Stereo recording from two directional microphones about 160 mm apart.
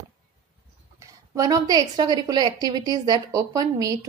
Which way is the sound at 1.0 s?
20° right (ahead or behind).